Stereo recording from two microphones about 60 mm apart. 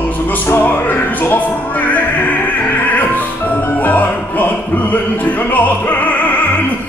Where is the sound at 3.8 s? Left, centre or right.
Left.